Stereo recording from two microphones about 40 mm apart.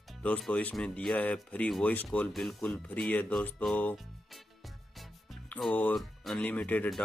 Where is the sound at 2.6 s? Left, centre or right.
Left.